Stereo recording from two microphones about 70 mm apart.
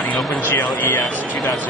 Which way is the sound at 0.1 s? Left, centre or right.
Left.